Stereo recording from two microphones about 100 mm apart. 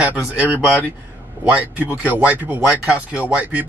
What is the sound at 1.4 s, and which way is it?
Speech, 15° right (ahead or behind).